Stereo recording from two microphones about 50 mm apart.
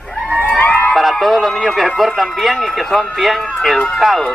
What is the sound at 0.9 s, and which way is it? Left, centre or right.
A man's voice, centre.